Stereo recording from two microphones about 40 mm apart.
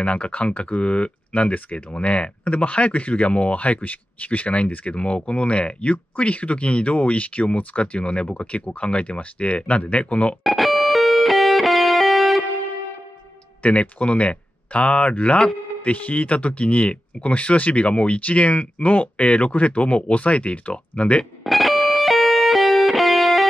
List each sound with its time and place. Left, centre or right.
0.0 s speech: left
1.5 s speech: left
1.9 s speech: left
10.4 s music: centre
13.6 s speech: left
21.5 s music: centre